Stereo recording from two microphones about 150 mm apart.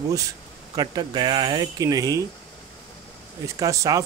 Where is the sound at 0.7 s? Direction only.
25° right (ahead or behind).